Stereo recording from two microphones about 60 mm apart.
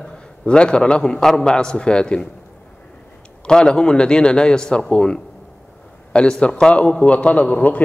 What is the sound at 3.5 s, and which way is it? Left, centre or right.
A man's voice, centre.